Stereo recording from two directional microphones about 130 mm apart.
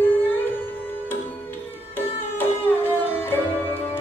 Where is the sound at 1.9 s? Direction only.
15° left (ahead or behind).